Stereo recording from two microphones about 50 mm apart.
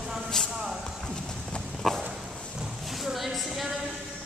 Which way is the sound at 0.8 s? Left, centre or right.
Centre.